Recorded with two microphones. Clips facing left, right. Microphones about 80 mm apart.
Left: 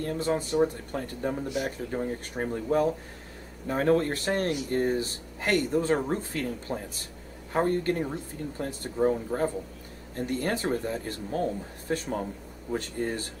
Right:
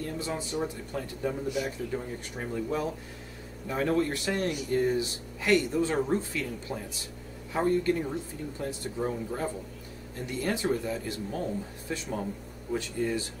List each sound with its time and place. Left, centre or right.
0.0 s speech: left
8.9 s speech: left
10.1 s speech: left